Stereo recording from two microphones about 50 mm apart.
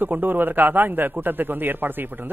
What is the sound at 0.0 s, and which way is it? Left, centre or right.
A man's voice, right.